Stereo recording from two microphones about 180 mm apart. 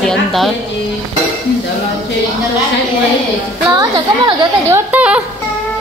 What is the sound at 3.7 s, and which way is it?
A woman's voice, 20° right (ahead or behind).